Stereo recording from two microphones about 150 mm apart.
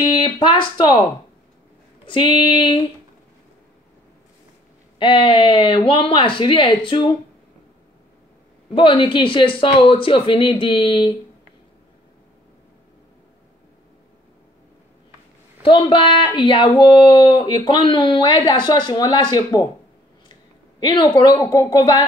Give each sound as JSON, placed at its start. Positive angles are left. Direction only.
{"t": 0.0, "sound": "speech", "side_deg": 30}
{"t": 2.0, "sound": "speech", "side_deg": 30}
{"t": 4.9, "sound": "speech", "side_deg": 35}
{"t": 8.7, "sound": "speech", "side_deg": 35}
{"t": 15.6, "sound": "speech", "side_deg": 35}
{"t": 20.8, "sound": "a woman's voice", "side_deg": 30}